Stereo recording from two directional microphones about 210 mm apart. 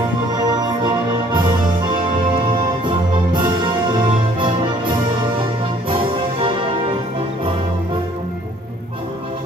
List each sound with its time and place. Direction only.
0.5 s music: 20° right (ahead or behind)
2.5 s music: 20° right (ahead or behind)
5.9 s music: 25° right (ahead or behind)